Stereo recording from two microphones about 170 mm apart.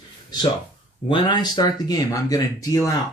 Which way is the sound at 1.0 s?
30° left (ahead or behind).